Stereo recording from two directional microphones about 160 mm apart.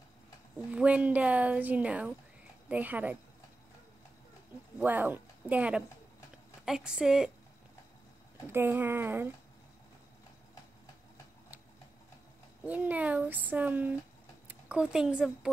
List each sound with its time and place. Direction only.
0.7 s speech: 10° right (ahead or behind)
4.7 s a woman's voice: 10° right (ahead or behind)
8.5 s speech: 15° right (ahead or behind)
12.6 s speech: 10° right (ahead or behind)